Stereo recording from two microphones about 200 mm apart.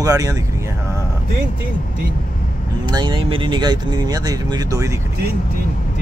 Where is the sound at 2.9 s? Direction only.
20° right (ahead or behind).